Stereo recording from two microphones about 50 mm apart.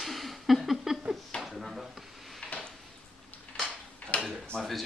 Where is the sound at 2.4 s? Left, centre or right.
Left.